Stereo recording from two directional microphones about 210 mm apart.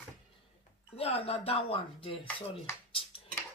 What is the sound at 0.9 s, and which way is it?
A woman's voice, 30° left (ahead or behind).